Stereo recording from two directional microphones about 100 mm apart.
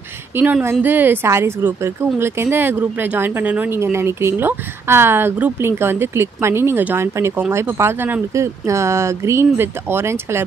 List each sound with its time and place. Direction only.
0.4 s a woman's voice: 20° right (ahead or behind)